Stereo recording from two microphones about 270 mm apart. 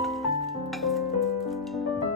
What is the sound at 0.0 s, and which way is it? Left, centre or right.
Music, centre.